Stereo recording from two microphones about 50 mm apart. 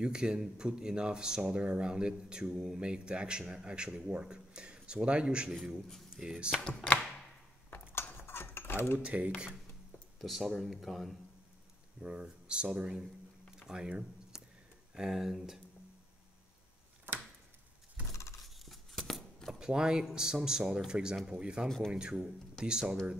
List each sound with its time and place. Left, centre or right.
0.0 s speech: centre
6.6 s speech: centre
7.9 s cutlery: left
8.9 s speech: right
10.2 s speech: centre
12.0 s speech: right
13.6 s a sound: centre
15.0 s speech: centre
18.7 s scissors: centre
19.6 s speech: centre
21.6 s speech: centre
21.9 s speech: centre